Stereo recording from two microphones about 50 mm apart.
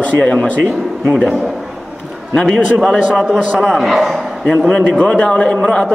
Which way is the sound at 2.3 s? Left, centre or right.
Centre.